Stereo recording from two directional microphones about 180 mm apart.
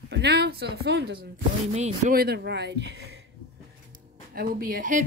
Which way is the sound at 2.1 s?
60° right (ahead or behind).